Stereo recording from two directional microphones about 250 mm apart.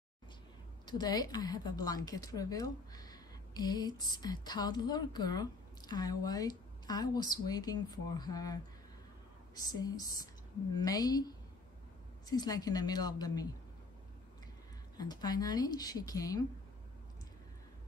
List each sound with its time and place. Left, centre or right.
0.8 s a woman's voice: centre
9.7 s a woman's voice: centre
15.0 s a woman's voice: centre